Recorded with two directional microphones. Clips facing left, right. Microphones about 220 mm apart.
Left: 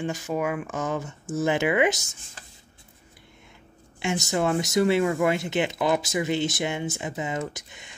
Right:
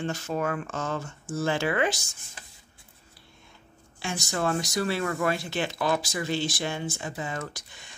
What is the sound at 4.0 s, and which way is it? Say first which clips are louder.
Speech: left 5 dB; 20° left (ahead or behind).